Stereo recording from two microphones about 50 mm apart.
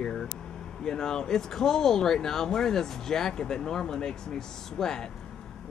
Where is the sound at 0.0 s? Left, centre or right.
Centre.